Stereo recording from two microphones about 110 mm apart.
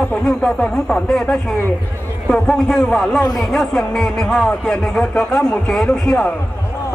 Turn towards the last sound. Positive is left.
turn(degrees=10)  # may be behind; listen again after turning